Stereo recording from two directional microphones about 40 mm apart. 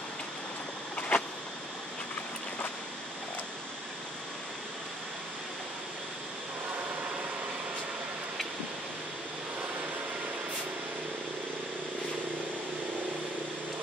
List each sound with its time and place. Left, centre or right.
0.9 s vehicle: left